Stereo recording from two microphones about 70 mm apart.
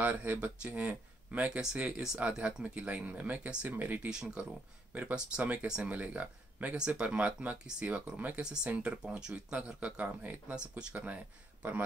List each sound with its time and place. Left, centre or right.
0.0 s speech: right
4.1 s speech: centre